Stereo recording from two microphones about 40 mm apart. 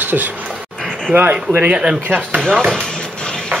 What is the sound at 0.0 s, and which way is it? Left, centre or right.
Speech, right.